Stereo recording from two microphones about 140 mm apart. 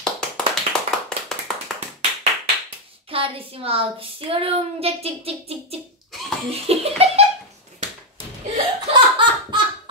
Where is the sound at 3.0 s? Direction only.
40° right (ahead or behind).